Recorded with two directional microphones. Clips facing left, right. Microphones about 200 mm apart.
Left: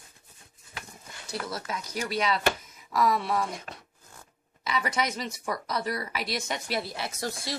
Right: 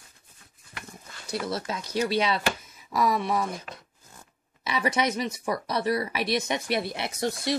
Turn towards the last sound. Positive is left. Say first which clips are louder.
# right 6 dB
turn(degrees=-20)  # may be behind; listen again after turning